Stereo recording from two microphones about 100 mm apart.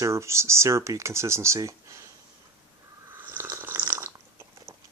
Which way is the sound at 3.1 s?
20° right (ahead or behind).